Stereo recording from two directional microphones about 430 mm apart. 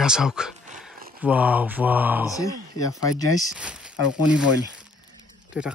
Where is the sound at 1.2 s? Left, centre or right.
Centre.